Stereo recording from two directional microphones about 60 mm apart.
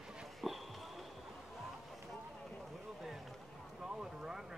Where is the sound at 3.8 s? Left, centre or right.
Centre.